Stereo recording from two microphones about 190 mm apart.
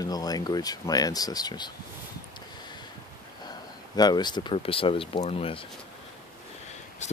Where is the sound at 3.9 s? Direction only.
20° left (ahead or behind).